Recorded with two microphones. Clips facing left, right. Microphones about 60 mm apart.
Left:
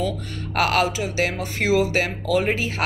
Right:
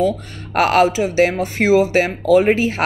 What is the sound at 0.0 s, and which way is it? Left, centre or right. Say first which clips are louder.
A woman's voice: right 7 dB; right.